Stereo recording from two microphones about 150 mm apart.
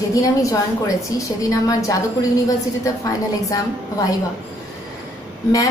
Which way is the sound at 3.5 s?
20° left (ahead or behind).